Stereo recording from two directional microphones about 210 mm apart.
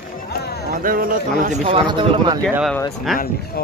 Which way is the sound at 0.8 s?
40° right (ahead or behind).